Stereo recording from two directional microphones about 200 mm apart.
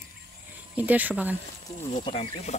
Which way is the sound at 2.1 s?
30° left (ahead or behind).